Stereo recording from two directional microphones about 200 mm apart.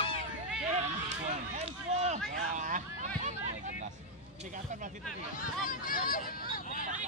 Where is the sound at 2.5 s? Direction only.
40° right (ahead or behind).